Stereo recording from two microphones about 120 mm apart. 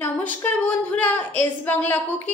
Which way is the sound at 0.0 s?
15° left (ahead or behind).